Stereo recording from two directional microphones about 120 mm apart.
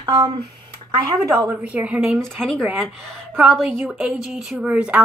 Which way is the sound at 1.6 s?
10° right (ahead or behind).